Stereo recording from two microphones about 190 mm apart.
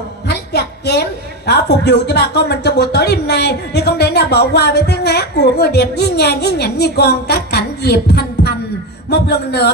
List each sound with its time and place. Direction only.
0.3 s a woman's voice: 60° left (ahead or behind)